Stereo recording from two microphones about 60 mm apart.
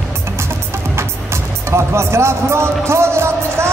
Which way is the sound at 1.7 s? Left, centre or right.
Right.